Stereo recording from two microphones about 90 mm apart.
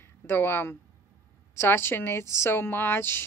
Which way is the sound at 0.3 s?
25° left (ahead or behind).